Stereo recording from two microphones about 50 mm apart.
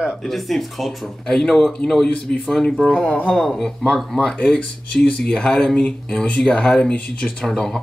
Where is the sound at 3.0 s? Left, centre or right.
Left.